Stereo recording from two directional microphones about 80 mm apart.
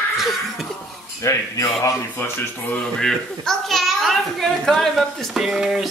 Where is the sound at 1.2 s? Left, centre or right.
Left.